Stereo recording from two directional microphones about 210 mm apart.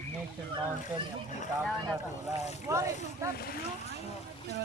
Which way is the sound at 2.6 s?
15° right (ahead or behind).